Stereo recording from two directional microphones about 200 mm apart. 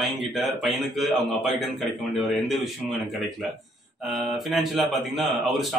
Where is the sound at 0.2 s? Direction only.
Centre (ahead or behind).